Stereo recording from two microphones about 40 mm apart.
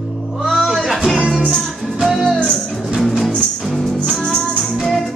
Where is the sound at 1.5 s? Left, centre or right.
Centre.